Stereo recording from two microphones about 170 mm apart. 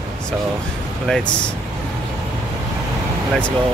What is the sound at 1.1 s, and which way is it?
Speech, 5° left (ahead or behind).